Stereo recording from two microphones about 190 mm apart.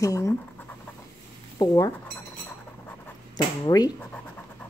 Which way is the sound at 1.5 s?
20° left (ahead or behind).